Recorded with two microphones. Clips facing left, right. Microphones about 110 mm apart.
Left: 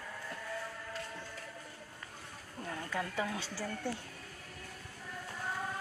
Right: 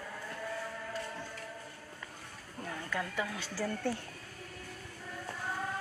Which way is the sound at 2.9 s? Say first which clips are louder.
Even; 30° left (ahead or behind).